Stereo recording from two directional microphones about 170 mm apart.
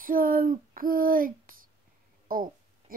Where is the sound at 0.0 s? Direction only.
55° right (ahead or behind).